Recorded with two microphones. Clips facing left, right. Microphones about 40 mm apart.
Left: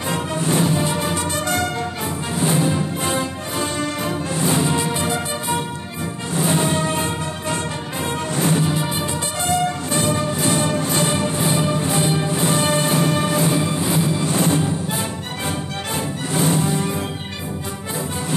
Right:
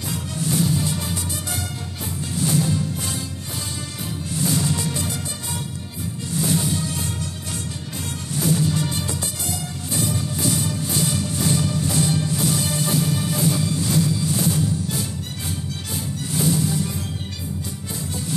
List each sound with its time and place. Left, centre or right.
0.1 s music: left
2.3 s music: left
3.8 s music: left
4.4 s music: left
9.5 s music: left